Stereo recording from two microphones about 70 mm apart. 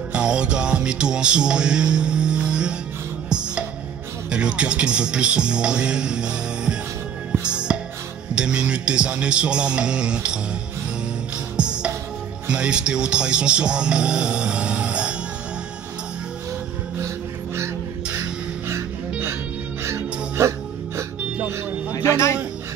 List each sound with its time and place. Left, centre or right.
0.1 s music: centre
4.3 s speech: centre
7.5 s music: centre
8.4 s speech: centre
11.5 s music: centre
12.4 s speech: centre
19.8 s music: right
21.9 s music: left